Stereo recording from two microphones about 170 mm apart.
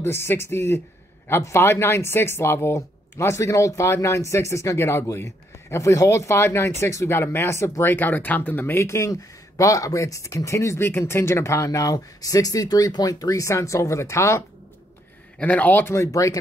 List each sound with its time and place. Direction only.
0.0 s speech: 15° left (ahead or behind)